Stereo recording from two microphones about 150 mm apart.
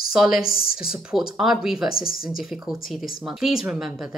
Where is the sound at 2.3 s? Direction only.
Centre (ahead or behind).